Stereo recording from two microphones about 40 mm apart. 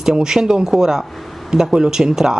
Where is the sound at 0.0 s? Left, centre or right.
Centre.